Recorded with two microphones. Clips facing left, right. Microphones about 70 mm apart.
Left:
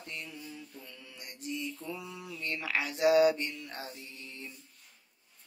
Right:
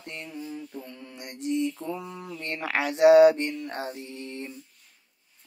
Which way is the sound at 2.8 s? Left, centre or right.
Right.